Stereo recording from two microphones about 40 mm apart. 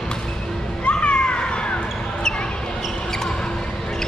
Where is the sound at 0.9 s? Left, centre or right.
Left.